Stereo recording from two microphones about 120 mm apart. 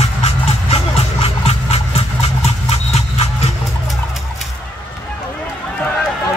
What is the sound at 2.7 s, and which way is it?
Horse, 60° left (ahead or behind).